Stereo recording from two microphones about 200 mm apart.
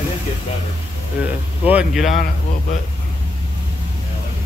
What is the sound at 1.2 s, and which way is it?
Speech, 5° right (ahead or behind).